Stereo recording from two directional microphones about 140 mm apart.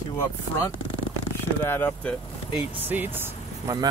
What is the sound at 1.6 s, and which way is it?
Speech, 15° left (ahead or behind).